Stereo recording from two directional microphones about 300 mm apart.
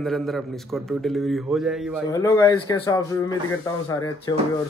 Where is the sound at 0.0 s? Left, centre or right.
Centre.